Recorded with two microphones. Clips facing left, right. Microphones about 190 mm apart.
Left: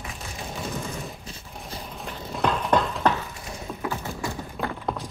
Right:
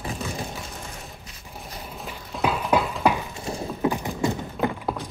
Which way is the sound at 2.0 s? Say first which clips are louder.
Even; 5° right (ahead or behind).